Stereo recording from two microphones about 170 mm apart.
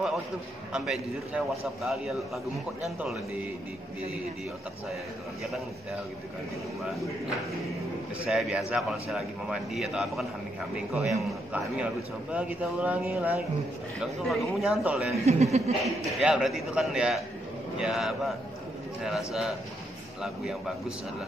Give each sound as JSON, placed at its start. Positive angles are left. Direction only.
{"t": 0.7, "sound": "a man's voice", "side_deg": -5}
{"t": 6.8, "sound": "a man's voice", "side_deg": 0}
{"t": 8.3, "sound": "a man's voice", "side_deg": 0}
{"t": 11.5, "sound": "a man's voice", "side_deg": -5}
{"t": 15.2, "sound": "speech", "side_deg": -40}
{"t": 15.8, "sound": "a man's voice", "side_deg": -5}